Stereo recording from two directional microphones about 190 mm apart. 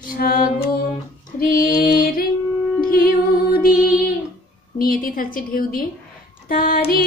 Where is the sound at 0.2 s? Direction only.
50° left (ahead or behind).